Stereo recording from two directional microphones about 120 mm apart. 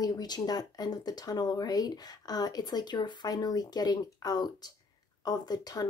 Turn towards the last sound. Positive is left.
turn(degrees=35)  # may be behind; listen again after turning